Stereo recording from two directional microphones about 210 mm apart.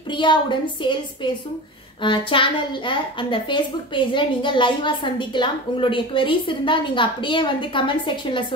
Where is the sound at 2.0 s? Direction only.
25° left (ahead or behind).